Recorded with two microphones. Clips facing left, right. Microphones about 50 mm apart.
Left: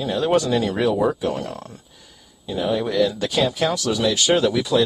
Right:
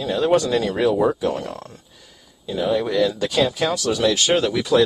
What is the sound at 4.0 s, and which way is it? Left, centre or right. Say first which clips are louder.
Speech: even; right.